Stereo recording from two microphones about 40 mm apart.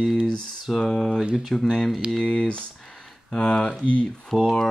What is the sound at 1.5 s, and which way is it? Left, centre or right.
Mantra, centre.